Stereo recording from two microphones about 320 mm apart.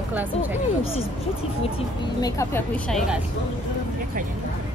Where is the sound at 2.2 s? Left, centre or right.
Centre.